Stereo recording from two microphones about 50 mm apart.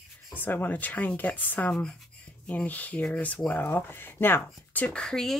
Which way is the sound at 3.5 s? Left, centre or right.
Left.